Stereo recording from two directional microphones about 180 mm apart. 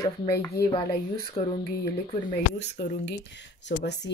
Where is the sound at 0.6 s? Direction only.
60° left (ahead or behind).